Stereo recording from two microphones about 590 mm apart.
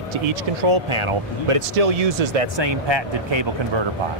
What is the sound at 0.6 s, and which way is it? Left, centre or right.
Speech, right.